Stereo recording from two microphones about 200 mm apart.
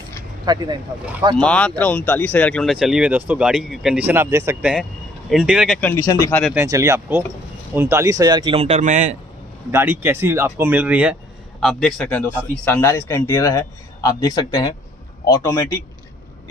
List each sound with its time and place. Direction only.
0.5 s speech: 20° right (ahead or behind)
1.4 s speech: 5° left (ahead or behind)
5.8 s a man's voice: 10° left (ahead or behind)
6.5 s speech: 10° right (ahead or behind); by 9.1 s 35° right (ahead or behind)
9.7 s speech: 10° right (ahead or behind)
11.6 s a man's voice: 5° left (ahead or behind)